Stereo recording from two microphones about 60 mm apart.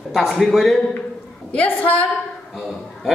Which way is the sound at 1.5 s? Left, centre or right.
Left.